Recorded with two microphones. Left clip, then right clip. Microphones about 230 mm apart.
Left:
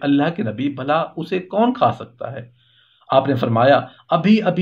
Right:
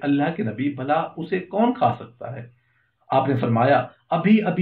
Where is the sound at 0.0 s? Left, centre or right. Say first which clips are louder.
Left 4 dB; left.